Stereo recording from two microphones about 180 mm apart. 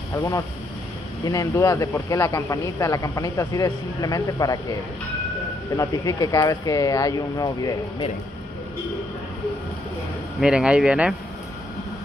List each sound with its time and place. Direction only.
0.1 s speech: 15° left (ahead or behind)
5.8 s speech: 20° left (ahead or behind)
10.4 s speech: 5° right (ahead or behind)